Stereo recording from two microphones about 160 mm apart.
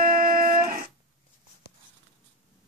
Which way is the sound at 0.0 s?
65° right (ahead or behind).